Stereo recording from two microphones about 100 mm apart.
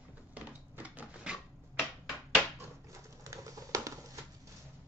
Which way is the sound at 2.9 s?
35° right (ahead or behind).